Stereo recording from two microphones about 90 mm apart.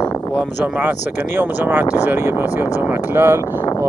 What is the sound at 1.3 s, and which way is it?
Speech, 20° right (ahead or behind).